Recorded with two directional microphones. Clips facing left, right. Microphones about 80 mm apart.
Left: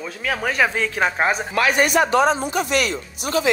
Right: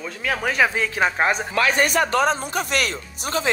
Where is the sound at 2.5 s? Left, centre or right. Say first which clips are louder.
Left 3 dB; right.